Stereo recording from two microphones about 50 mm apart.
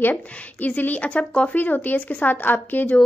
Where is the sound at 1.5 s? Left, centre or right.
Left.